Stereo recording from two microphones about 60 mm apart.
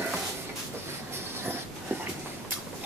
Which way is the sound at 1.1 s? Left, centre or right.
Right.